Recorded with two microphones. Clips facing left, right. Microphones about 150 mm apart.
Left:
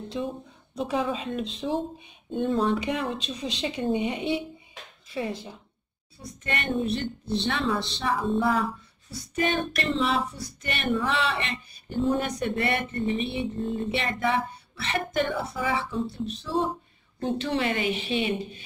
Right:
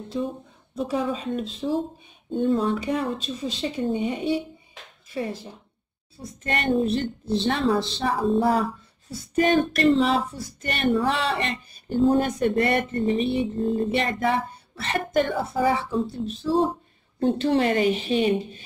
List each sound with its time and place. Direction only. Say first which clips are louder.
0.8 s speech: right 2 dB; 40° right (ahead or behind)
2.3 s child singing: right 2 dB; 40° right (ahead or behind)
6.4 s child singing: right 5 dB; 40° right (ahead or behind)